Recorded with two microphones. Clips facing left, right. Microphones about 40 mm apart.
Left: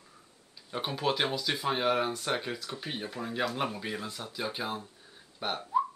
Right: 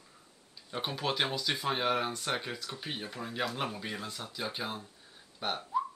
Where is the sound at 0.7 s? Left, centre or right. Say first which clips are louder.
Left 3 dB; centre.